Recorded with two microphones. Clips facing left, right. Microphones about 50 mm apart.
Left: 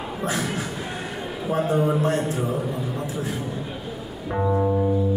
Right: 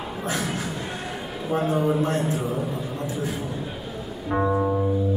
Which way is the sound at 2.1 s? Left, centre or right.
Centre.